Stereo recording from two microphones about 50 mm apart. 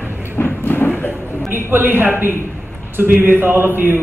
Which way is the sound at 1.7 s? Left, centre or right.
Right.